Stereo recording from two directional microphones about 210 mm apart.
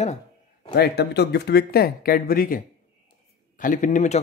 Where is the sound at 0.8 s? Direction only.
50° left (ahead or behind).